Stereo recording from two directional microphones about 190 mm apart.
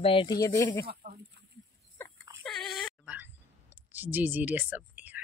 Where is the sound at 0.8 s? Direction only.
55° right (ahead or behind).